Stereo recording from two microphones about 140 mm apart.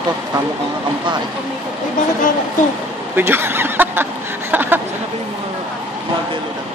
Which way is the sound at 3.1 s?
15° right (ahead or behind).